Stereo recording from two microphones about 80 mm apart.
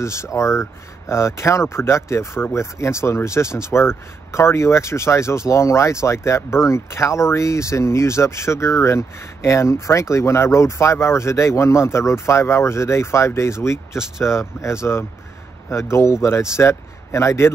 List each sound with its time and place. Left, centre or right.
0.0 s speech: left